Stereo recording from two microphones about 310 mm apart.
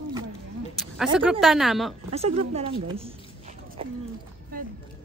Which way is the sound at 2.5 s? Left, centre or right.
Centre.